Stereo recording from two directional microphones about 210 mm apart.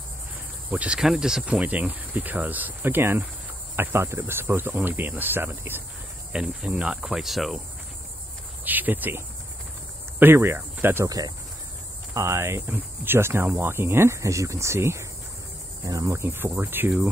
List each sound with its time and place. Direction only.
0.7 s speech: 5° right (ahead or behind)
8.6 s speech: 10° right (ahead or behind)